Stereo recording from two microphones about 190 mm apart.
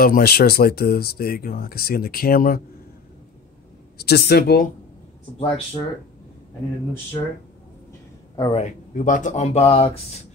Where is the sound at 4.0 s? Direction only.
60° left (ahead or behind).